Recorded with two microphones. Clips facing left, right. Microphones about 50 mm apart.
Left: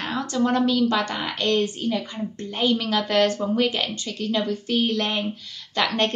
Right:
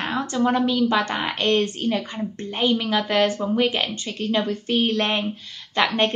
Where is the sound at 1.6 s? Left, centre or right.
Right.